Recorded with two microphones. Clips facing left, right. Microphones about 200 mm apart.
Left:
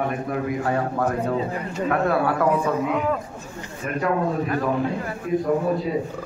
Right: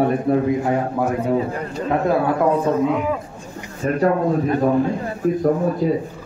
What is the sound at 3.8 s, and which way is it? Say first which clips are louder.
Speech: right 5 dB; 30° right (ahead or behind).